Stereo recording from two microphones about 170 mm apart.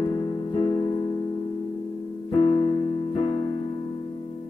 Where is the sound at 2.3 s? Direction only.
30° left (ahead or behind).